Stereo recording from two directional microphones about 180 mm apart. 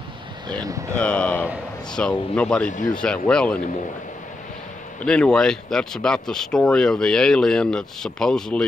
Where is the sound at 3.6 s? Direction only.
45° left (ahead or behind).